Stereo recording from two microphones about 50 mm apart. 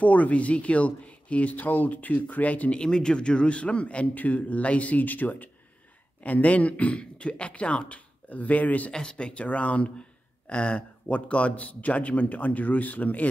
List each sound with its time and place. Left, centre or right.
0.0 s speech: left
2.8 s speech: centre; by 8.9 s left
8.9 s speech: centre